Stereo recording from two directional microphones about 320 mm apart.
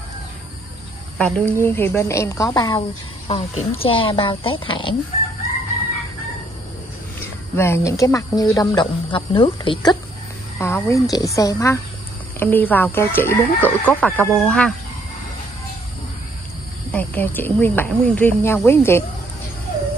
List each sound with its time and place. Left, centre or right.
1.1 s speech: centre
7.5 s speech: centre
16.9 s speech: centre